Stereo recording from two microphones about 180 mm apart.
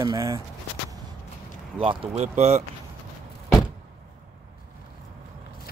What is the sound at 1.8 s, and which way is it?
Speech, 30° right (ahead or behind).